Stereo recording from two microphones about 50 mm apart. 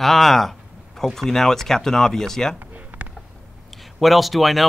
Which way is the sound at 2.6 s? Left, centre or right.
Right.